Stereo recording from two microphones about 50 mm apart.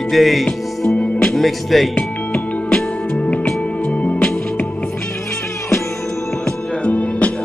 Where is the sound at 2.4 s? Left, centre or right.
Left.